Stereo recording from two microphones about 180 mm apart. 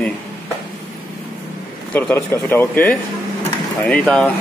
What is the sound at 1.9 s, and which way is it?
Speech, 10° left (ahead or behind).